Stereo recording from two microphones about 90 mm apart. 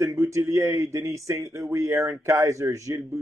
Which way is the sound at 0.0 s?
35° right (ahead or behind).